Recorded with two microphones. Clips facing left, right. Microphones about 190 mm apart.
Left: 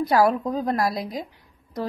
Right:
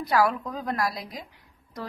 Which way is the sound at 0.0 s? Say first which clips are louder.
Left 4 dB; 30° left (ahead or behind).